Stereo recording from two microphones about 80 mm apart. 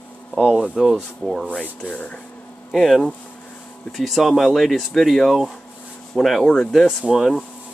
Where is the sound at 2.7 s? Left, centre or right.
Centre.